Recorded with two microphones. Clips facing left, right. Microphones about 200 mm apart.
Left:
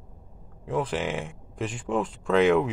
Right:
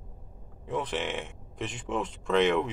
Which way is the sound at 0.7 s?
Centre (ahead or behind).